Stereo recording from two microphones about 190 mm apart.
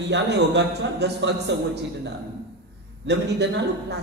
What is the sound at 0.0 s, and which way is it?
A man's voice, 65° right (ahead or behind).